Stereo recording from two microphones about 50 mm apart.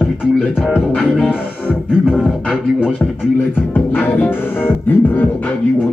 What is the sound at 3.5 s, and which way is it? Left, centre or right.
Music, left.